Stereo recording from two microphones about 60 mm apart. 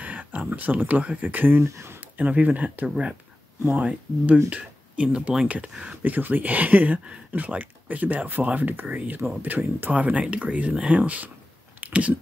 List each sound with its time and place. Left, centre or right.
0.0 s speech: right
2.9 s speech: centre
3.6 s speech: right
6.0 s speech: right
11.8 s a sound: right